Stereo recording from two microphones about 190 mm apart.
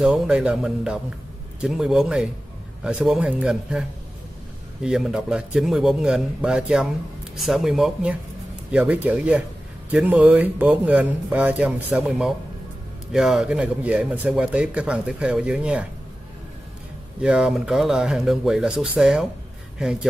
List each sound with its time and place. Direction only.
0.0 s a man's voice: 5° right (ahead or behind)
4.8 s a man's voice: 5° right (ahead or behind)
17.2 s a man's voice: 5° right (ahead or behind)